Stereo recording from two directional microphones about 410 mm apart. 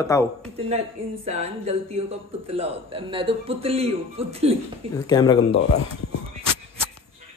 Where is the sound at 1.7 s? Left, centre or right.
Centre.